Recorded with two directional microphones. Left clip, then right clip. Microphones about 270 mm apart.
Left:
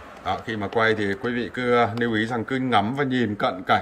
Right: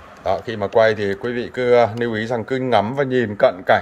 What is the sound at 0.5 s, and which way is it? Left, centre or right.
A man's voice, centre.